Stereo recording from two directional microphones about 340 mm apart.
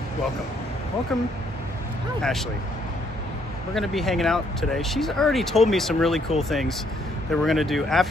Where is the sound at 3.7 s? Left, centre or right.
Centre.